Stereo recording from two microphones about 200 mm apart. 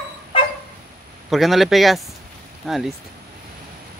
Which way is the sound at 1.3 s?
Centre (ahead or behind).